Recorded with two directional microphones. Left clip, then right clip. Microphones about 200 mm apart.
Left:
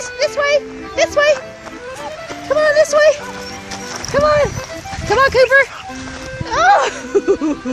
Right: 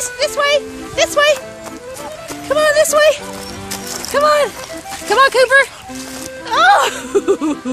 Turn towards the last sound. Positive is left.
turn(degrees=0)  # may be behind; listen again after turning